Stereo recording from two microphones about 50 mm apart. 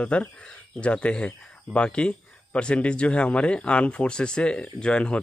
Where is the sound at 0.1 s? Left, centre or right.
Left.